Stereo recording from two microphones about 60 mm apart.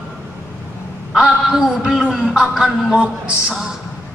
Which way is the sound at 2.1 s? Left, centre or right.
Centre.